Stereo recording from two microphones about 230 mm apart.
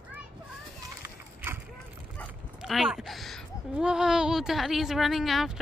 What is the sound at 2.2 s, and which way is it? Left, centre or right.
Speech, centre.